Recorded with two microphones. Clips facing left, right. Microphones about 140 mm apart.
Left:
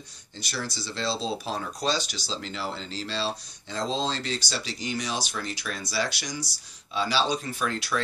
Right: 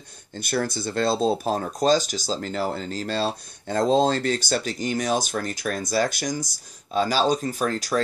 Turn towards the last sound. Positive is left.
turn(degrees=-40)  # may be behind; listen again after turning